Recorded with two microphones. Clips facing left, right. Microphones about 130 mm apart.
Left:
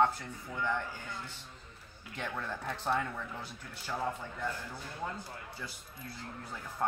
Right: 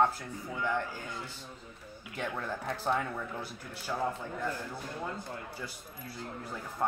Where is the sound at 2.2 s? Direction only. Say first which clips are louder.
Right 3 dB; 5° right (ahead or behind).